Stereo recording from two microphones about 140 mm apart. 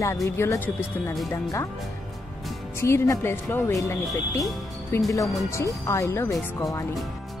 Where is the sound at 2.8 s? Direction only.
20° left (ahead or behind).